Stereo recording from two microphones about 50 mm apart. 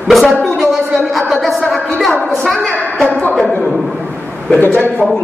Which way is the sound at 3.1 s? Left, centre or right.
Left.